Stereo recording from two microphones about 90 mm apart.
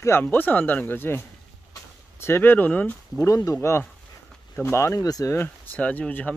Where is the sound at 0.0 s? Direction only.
25° left (ahead or behind).